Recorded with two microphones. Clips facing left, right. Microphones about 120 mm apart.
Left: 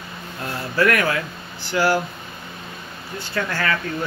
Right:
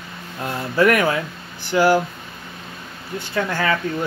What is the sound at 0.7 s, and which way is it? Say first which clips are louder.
Speech: right 3 dB; 20° right (ahead or behind).